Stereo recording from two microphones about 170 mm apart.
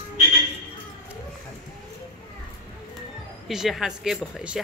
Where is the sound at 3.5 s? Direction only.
Centre (ahead or behind).